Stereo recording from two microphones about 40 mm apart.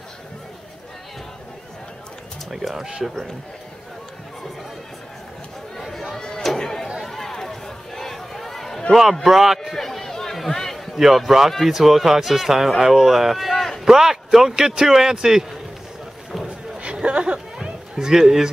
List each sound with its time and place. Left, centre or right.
2.5 s speech: centre
5.8 s a sound: centre
6.4 s chatter: centre
7.0 s run: centre
9.1 s speech: centre
9.8 s a sound: centre
11.0 s speech: centre
13.5 s run: centre
13.8 s speech: centre
16.7 s a sound: right